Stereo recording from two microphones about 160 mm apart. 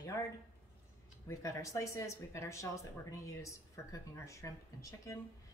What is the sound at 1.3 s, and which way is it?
A woman's voice, 20° left (ahead or behind).